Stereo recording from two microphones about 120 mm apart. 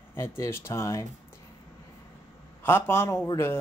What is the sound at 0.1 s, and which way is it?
Speech, 20° left (ahead or behind).